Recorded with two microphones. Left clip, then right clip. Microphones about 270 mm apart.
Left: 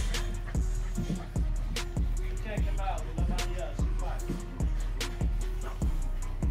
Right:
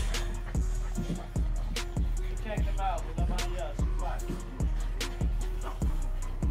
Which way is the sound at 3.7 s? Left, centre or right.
Centre.